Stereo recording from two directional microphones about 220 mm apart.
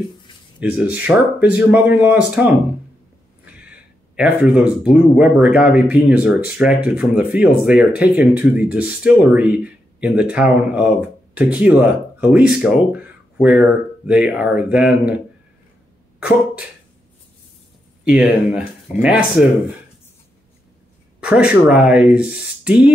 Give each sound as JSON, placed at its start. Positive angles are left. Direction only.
{"t": 0.6, "sound": "speech", "side_deg": -5}
{"t": 3.5, "sound": "speech", "side_deg": -5}
{"t": 16.2, "sound": "a sound", "side_deg": -5}
{"t": 18.0, "sound": "speech", "side_deg": -5}
{"t": 21.2, "sound": "speech", "side_deg": -5}